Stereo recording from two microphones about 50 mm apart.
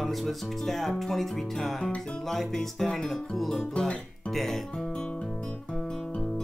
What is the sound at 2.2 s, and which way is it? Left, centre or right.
Music, centre.